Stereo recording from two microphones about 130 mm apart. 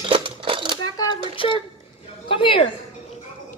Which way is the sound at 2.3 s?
40° left (ahead or behind).